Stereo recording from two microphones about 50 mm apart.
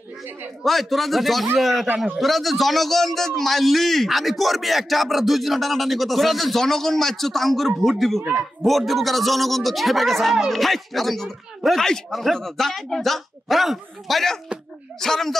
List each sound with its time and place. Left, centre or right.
0.7 s a man's voice: centre
8.2 s a man's voice: right
8.6 s a man's voice: centre